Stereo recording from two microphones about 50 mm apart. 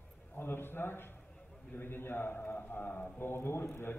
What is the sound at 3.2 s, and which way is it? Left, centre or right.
Speech, left.